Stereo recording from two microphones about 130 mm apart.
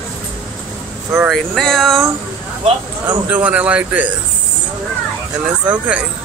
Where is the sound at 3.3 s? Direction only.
10° right (ahead or behind).